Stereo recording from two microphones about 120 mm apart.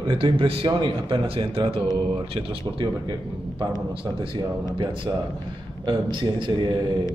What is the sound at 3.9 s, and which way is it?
Speech, 45° right (ahead or behind).